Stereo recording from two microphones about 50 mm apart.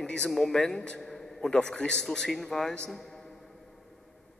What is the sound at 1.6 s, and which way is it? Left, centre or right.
A man's voice, centre.